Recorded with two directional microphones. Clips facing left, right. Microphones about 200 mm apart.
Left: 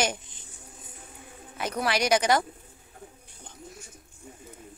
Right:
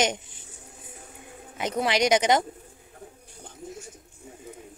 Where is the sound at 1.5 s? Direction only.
20° right (ahead or behind).